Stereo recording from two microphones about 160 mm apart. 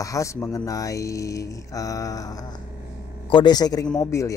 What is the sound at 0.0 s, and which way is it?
Speech, 20° left (ahead or behind).